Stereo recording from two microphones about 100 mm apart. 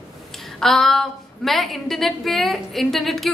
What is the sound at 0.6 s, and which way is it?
A woman's voice, 5° left (ahead or behind).